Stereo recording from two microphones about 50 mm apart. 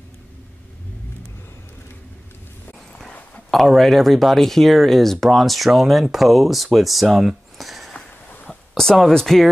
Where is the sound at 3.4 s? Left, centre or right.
Centre.